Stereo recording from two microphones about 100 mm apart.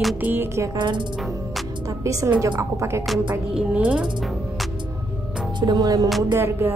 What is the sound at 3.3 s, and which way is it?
Speech, 15° right (ahead or behind).